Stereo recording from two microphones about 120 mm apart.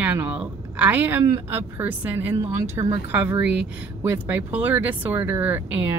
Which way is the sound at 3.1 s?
15° right (ahead or behind).